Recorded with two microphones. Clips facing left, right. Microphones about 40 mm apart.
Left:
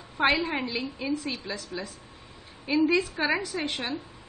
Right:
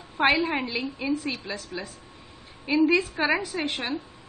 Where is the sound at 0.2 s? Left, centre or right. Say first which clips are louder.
Right 2 dB; centre.